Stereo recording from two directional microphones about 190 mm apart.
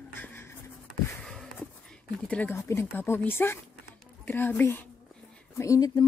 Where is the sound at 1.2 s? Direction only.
5° left (ahead or behind).